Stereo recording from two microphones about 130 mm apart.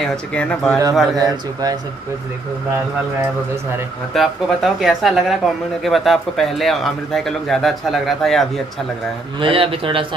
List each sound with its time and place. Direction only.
0.0 s speech: 5° left (ahead or behind)
1.1 s speech: 30° right (ahead or behind)
4.1 s speech: centre (ahead or behind)
9.4 s speech: 45° right (ahead or behind)